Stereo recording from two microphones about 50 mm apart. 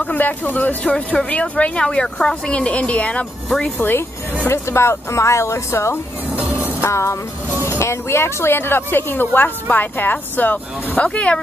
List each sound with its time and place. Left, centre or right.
0.0 s a woman's voice: left
0.9 s a woman's voice: left
3.4 s speech: centre
4.5 s speech: left
6.8 s music: left
7.8 s a woman's voice: left